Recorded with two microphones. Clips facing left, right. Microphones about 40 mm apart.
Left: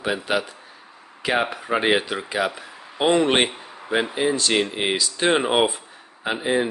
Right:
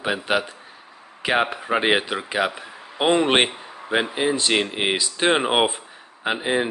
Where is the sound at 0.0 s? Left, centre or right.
Centre.